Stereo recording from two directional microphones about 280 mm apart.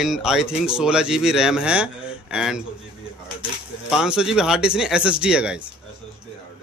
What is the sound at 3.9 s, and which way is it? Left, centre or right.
Speech, centre.